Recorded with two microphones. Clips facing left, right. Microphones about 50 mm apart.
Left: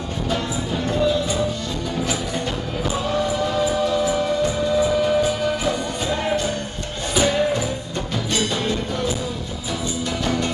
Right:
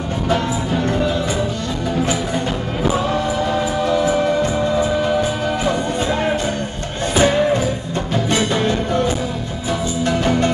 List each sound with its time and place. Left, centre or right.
4.0 s music: right
7.2 s music: right